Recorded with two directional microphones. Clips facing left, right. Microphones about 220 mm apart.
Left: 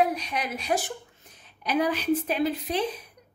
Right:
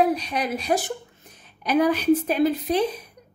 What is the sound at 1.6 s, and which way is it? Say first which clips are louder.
A woman's voice: right 6 dB; 45° right (ahead or behind).